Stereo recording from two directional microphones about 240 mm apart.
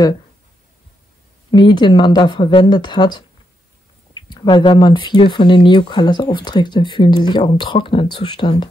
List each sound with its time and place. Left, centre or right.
1.5 s speech: centre